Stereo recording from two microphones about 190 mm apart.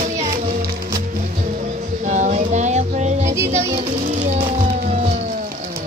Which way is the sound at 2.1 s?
40° right (ahead or behind).